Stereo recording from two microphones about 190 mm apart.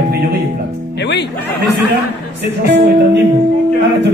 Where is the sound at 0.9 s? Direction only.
65° left (ahead or behind).